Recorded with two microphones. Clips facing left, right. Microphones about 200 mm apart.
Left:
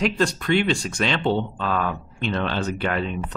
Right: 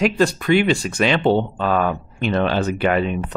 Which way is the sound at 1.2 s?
55° right (ahead or behind).